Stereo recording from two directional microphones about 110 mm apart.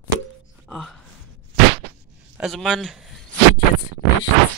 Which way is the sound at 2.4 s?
Centre (ahead or behind).